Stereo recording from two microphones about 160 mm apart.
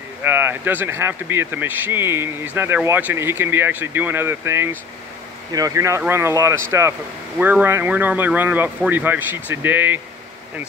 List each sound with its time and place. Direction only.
0.2 s speech: 15° right (ahead or behind)